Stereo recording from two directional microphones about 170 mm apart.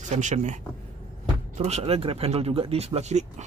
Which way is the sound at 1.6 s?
35° right (ahead or behind).